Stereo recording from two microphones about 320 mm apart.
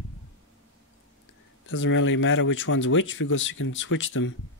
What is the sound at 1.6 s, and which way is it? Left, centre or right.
Speech, left.